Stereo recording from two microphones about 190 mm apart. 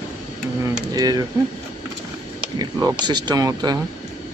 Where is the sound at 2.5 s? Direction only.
20° right (ahead or behind).